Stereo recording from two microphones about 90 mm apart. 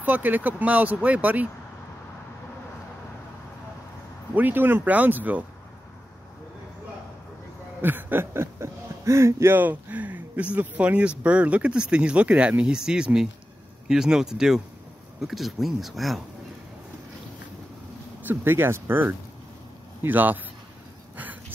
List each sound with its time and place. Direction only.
0.0 s speech: 20° right (ahead or behind)
4.4 s speech: 20° right (ahead or behind)
7.8 s speech: 25° right (ahead or behind); by 16.2 s centre (ahead or behind)
18.2 s speech: 25° right (ahead or behind)